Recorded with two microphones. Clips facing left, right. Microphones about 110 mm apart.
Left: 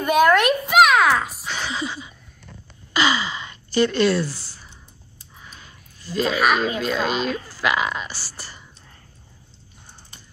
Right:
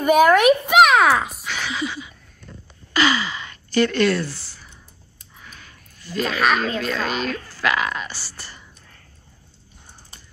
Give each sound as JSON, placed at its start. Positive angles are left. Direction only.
{"t": 0.0, "sound": "speech", "side_deg": -10}
{"t": 1.4, "sound": "a sound", "side_deg": 30}
{"t": 2.9, "sound": "gasp", "side_deg": 20}
{"t": 5.5, "sound": "a sound", "side_deg": 20}
{"t": 6.3, "sound": "speech", "side_deg": 10}
{"t": 8.1, "sound": "speech", "side_deg": 10}